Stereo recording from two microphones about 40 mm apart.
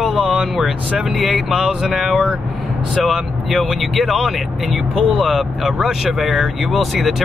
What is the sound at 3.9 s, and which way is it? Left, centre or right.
Speech, centre.